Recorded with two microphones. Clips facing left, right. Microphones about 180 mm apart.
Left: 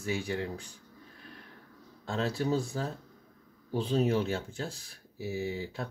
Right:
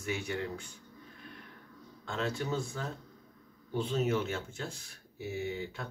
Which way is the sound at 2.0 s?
35° left (ahead or behind).